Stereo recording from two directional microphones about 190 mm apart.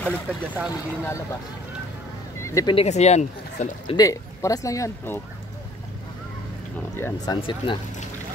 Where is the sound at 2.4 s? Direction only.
15° left (ahead or behind).